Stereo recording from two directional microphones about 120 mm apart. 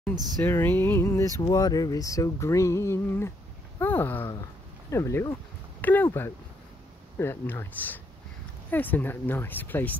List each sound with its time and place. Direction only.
0.1 s speech: 35° right (ahead or behind)
0.4 s speech: 20° left (ahead or behind)
1.4 s speech: 35° left (ahead or behind)
5.8 s speech: 15° left (ahead or behind)